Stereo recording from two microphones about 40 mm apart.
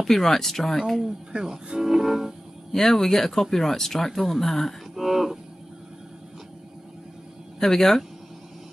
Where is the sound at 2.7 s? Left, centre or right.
Centre.